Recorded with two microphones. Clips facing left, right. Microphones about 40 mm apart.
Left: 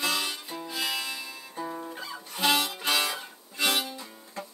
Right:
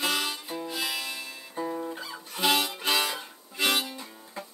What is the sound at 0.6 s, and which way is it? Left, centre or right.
Music, centre.